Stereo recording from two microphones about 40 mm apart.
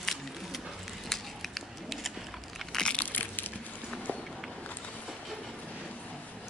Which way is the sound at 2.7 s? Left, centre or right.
Left.